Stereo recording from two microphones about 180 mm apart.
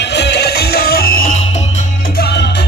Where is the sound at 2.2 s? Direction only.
65° left (ahead or behind).